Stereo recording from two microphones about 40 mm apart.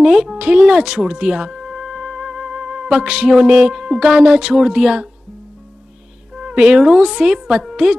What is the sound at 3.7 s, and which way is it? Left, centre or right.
Speech, centre.